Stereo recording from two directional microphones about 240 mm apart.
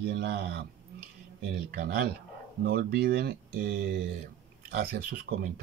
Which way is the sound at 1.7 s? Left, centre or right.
Right.